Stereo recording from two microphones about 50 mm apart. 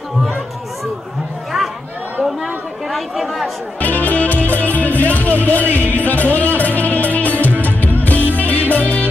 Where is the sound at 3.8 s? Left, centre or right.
Left.